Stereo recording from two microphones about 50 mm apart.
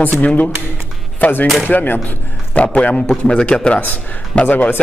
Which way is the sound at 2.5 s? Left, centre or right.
Left.